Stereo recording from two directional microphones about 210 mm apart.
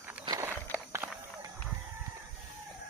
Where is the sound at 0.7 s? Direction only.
10° right (ahead or behind).